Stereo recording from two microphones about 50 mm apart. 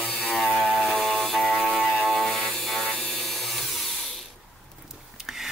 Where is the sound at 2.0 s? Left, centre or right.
Centre.